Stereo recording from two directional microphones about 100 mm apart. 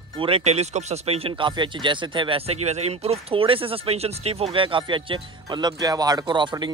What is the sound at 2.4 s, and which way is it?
Speech, 90° right.